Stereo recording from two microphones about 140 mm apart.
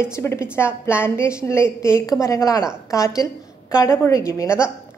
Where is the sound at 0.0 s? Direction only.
20° left (ahead or behind).